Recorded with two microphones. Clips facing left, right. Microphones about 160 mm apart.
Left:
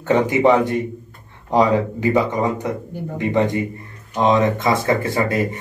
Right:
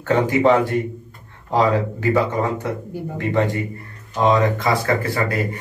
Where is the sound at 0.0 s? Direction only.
20° left (ahead or behind).